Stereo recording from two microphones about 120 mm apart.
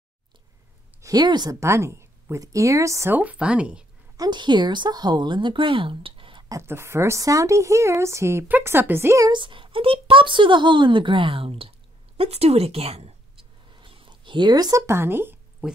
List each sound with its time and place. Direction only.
1.0 s a woman's voice: 35° right (ahead or behind)
3.2 s speech: 10° right (ahead or behind)
4.2 s speech: 40° right (ahead or behind)
6.5 s a woman's voice: 20° right (ahead or behind)
9.3 s speech: 45° right (ahead or behind)
13.7 s a sound: 45° right (ahead or behind); by 15.3 s 20° right (ahead or behind)